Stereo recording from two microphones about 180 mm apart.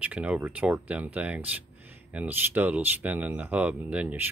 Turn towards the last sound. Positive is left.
turn(degrees=-10)  # may be behind; listen again after turning